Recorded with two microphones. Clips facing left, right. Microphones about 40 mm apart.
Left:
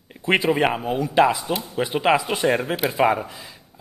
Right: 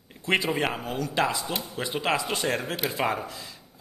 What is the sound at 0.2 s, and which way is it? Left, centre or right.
A man's voice, centre.